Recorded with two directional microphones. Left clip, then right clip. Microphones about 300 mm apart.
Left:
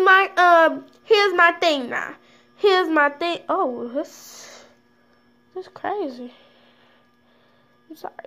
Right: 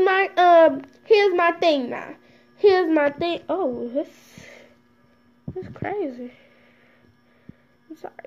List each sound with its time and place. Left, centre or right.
0.1 s a sound: centre
3.4 s speech: centre
5.6 s speech: centre